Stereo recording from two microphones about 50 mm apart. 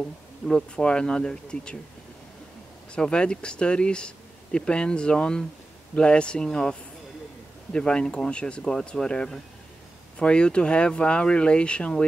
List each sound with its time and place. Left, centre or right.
0.5 s speech: centre
2.9 s speech: left